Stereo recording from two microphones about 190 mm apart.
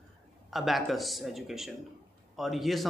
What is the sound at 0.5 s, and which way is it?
A man's voice, centre (ahead or behind).